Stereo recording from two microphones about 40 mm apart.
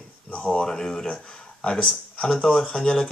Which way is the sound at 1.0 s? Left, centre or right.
Left.